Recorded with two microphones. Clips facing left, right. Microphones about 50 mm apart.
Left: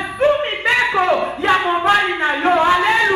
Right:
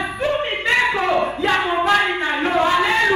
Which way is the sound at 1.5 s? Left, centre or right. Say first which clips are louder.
Left 4 dB; centre.